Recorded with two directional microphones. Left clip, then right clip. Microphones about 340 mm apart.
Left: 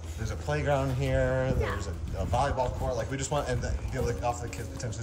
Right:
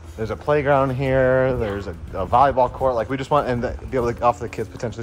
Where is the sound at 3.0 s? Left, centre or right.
Centre.